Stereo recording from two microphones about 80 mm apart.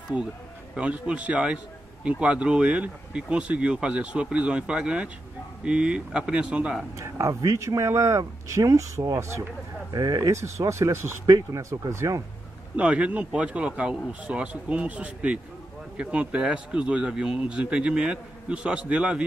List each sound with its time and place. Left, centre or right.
0.7 s speech: centre
7.0 s speech: right
9.9 s speech: right
10.6 s speech: right
12.7 s speech: centre